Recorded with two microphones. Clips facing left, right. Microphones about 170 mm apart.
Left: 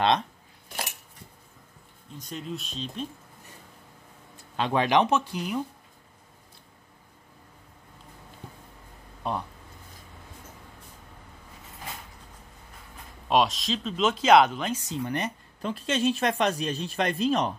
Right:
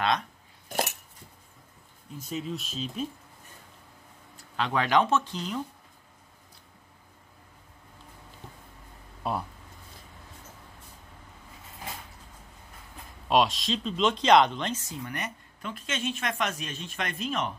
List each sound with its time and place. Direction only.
2.1 s speech: 5° right (ahead or behind)
4.6 s speech: 25° left (ahead or behind)
9.2 s speech: 5° right (ahead or behind)
13.3 s speech: centre (ahead or behind)
14.9 s speech: 30° left (ahead or behind)